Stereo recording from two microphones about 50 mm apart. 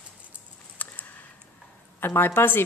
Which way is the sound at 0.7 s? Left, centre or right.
Left.